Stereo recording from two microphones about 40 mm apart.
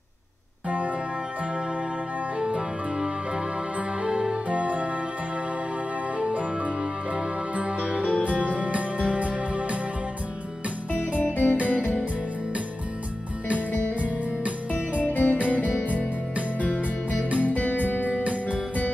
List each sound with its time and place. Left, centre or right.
0.7 s music: right
2.3 s music: right
6.1 s music: right
11.1 s music: left
14.4 s music: right
15.0 s music: left
15.3 s music: right
15.6 s music: left
17.4 s music: left
18.2 s music: right